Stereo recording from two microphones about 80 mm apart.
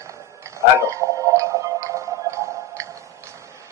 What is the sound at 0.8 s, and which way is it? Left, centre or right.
Music, right.